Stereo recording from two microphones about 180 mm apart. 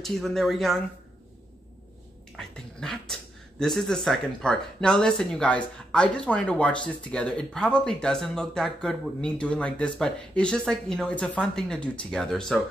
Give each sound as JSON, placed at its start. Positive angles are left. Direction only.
{"t": 0.0, "sound": "speech", "side_deg": 0}
{"t": 2.3, "sound": "speech", "side_deg": 5}